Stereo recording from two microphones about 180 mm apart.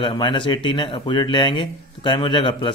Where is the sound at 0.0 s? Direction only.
25° left (ahead or behind).